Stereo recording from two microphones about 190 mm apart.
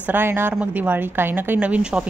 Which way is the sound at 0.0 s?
10° right (ahead or behind).